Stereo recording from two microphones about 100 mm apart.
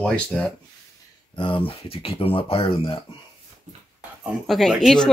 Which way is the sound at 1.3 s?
55° left (ahead or behind).